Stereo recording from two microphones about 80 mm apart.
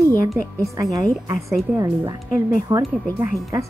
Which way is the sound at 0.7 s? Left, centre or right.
Right.